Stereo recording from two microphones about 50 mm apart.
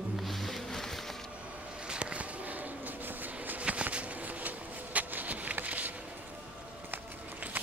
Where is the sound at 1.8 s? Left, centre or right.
Centre.